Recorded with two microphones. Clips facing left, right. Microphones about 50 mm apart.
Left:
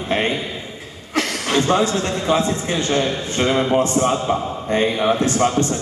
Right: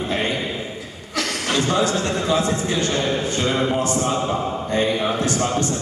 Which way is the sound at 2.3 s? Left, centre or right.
Left.